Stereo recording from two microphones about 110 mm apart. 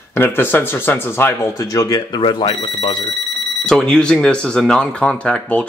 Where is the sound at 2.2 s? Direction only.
45° left (ahead or behind).